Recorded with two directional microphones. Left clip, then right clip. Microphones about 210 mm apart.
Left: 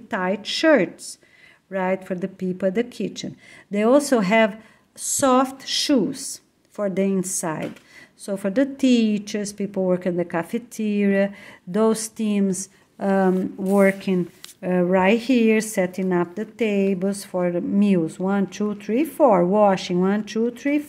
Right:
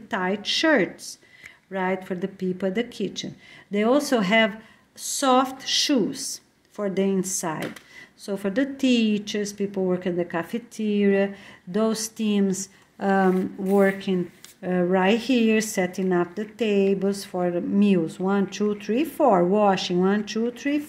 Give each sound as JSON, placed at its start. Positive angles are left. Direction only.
{"t": 0.1, "sound": "speech", "side_deg": 25}